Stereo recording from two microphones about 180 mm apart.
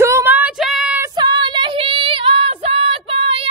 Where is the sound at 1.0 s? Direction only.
25° right (ahead or behind).